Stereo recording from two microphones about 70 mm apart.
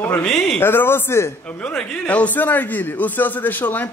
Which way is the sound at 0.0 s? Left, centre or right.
Left.